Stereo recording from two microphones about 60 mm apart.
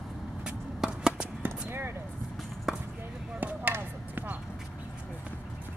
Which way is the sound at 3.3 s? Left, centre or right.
Right.